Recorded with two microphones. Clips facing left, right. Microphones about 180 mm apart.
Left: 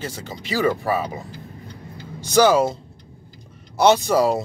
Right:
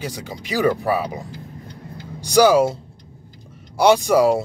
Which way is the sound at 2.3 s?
10° right (ahead or behind).